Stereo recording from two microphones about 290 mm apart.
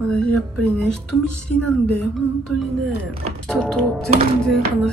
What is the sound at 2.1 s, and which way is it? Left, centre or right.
Speech, centre.